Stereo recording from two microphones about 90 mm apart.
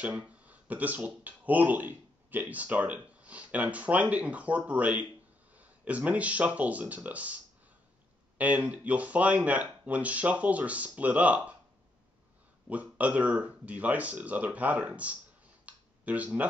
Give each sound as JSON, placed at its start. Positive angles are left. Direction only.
{"t": 0.0, "sound": "speech", "side_deg": -15}
{"t": 12.6, "sound": "speech", "side_deg": -15}
{"t": 15.6, "sound": "a sound", "side_deg": -15}